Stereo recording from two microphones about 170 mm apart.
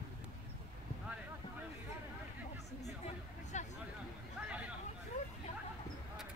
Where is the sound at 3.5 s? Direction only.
45° left (ahead or behind).